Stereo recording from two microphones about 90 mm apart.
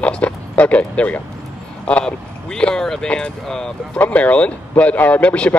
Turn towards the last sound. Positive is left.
turn(degrees=15)  # may be behind; listen again after turning